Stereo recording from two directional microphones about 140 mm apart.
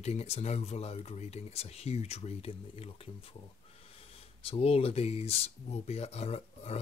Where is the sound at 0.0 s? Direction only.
50° left (ahead or behind).